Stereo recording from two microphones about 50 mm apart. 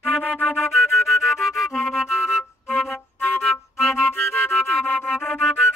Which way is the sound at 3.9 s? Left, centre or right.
Left.